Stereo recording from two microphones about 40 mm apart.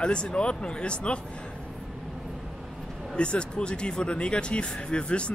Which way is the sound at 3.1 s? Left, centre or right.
Left.